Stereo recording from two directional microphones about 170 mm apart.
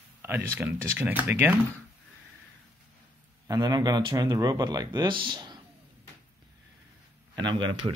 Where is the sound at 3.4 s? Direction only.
20° right (ahead or behind).